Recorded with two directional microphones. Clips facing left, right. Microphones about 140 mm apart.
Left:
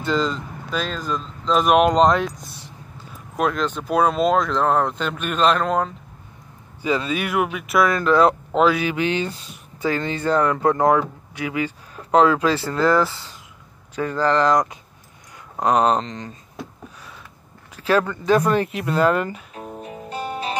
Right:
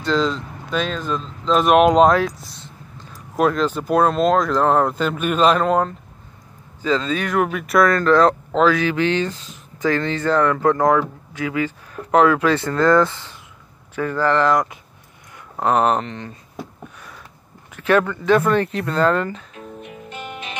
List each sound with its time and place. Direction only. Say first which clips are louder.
0.0 s speech: right 2 dB; 5° left (ahead or behind)
3.3 s speech: right 4 dB; centre (ahead or behind)
6.8 s speech: right 2 dB; 15° left (ahead or behind); by 12.6 s 30° left (ahead or behind)
12.6 s speech: right 4 dB; 10° left (ahead or behind)
16.1 s speech: right 1 dB; 35° left (ahead or behind)
17.7 s speech: right 2 dB; 30° left (ahead or behind)
18.4 s speech: right 1 dB; 10° left (ahead or behind)
19.5 s music: left 2 dB; 35° left (ahead or behind)